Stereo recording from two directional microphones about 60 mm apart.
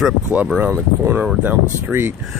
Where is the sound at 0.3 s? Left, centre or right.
Right.